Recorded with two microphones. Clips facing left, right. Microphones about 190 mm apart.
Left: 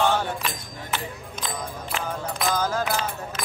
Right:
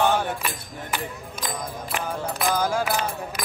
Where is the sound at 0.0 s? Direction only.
10° right (ahead or behind).